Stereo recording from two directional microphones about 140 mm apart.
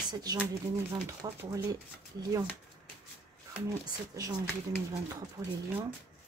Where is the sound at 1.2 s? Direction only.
25° right (ahead or behind).